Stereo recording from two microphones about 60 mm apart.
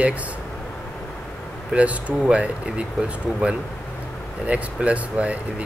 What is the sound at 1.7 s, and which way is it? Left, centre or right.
Speech, right.